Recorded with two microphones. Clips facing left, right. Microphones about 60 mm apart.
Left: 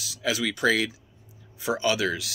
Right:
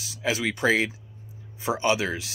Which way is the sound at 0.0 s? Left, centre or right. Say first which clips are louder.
Right 1 dB; right.